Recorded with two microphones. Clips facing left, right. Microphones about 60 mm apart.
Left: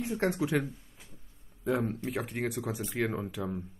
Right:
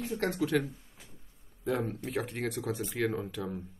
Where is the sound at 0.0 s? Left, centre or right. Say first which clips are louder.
Left 1 dB; centre.